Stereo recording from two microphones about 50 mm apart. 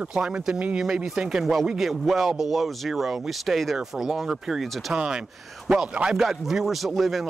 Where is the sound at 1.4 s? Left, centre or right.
Centre.